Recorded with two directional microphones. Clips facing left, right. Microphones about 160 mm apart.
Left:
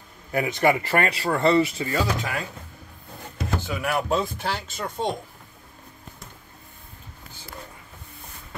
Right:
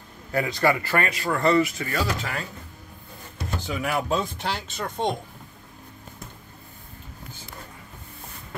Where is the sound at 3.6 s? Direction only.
Centre (ahead or behind).